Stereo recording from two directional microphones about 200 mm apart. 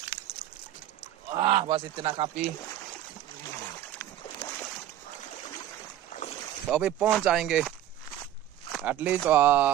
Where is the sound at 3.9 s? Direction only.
20° left (ahead or behind).